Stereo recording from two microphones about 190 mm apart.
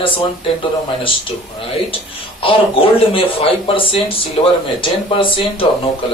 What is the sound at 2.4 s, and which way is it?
Speech, 30° left (ahead or behind).